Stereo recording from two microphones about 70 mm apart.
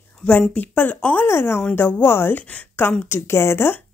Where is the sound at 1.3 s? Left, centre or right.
Left.